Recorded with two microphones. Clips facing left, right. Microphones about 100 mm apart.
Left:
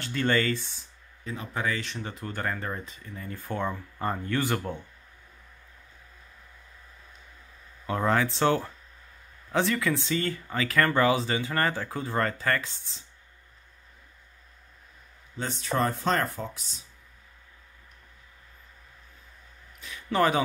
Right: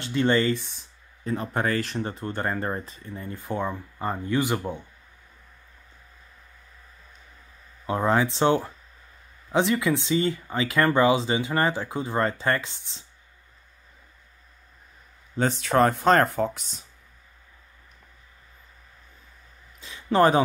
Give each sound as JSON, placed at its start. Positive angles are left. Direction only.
{"t": 0.0, "sound": "speech", "side_deg": -20}
{"t": 0.5, "sound": "speech", "side_deg": -5}
{"t": 1.2, "sound": "speech", "side_deg": -35}
{"t": 7.8, "sound": "speech", "side_deg": -20}
{"t": 15.6, "sound": "speech", "side_deg": -70}
{"t": 19.8, "sound": "a sound", "side_deg": -25}